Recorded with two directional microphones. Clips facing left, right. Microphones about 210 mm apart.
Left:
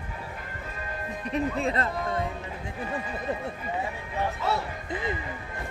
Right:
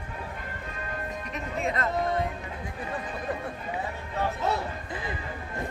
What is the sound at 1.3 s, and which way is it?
Speech, 30° left (ahead or behind).